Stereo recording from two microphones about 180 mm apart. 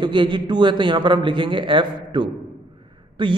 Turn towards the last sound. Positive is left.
turn(degrees=-25)  # may be behind; listen again after turning